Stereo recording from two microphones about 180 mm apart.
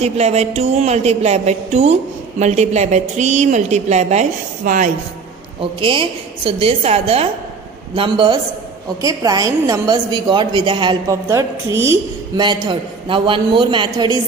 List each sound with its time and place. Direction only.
0.0 s a woman's voice: 35° right (ahead or behind)
5.6 s a woman's voice: 30° right (ahead or behind)
12.4 s a woman's voice: 25° right (ahead or behind)